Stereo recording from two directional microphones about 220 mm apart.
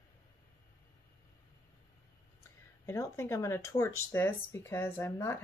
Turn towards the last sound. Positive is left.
turn(degrees=10)  # may be behind; listen again after turning